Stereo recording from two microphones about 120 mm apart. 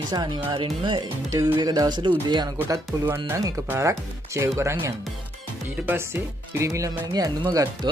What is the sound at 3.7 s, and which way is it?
Speech, 20° right (ahead or behind).